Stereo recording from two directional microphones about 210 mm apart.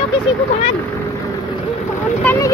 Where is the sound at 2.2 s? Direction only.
10° left (ahead or behind).